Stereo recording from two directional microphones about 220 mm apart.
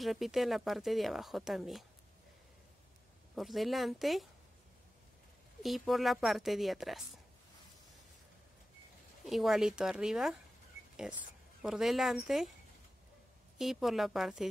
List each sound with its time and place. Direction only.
0.0 s speech: centre (ahead or behind)
3.3 s speech: centre (ahead or behind)
5.6 s speech: centre (ahead or behind)
9.2 s speech: centre (ahead or behind)
11.6 s speech: centre (ahead or behind)
13.6 s speech: centre (ahead or behind)